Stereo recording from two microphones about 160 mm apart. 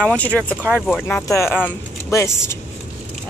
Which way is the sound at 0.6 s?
5° right (ahead or behind).